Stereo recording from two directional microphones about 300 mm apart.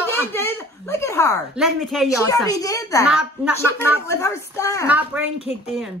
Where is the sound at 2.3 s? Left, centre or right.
Centre.